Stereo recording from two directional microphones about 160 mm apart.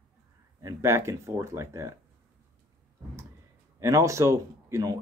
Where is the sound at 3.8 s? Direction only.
20° right (ahead or behind).